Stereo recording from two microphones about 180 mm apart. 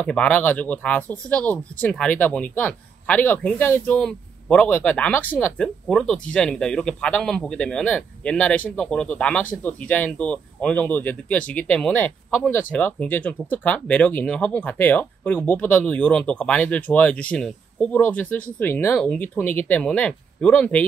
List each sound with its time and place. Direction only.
0.0 s speech: 5° left (ahead or behind)